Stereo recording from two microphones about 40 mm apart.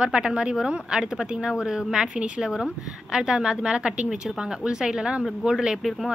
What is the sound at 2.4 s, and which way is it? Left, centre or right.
A woman's voice, centre.